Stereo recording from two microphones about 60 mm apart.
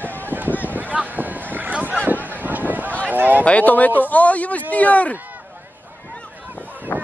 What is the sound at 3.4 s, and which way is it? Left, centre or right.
Speech, left.